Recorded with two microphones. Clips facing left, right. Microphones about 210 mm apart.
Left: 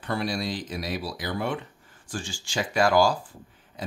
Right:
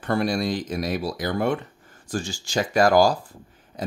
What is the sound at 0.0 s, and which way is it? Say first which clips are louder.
Speech: right 5 dB; 50° right (ahead or behind).